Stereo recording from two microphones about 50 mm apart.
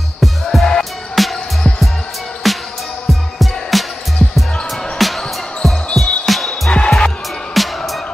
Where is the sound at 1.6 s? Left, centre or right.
Left.